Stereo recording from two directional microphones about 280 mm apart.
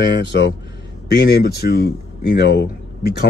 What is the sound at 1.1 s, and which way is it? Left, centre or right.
Speech, left.